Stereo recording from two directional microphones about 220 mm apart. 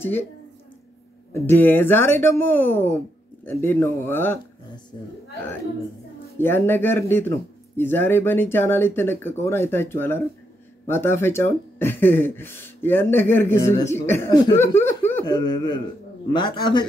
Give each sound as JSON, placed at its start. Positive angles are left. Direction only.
{"t": 0.0, "sound": "speech", "side_deg": 10}
{"t": 1.3, "sound": "speech", "side_deg": 10}
{"t": 6.3, "sound": "a man's voice", "side_deg": 10}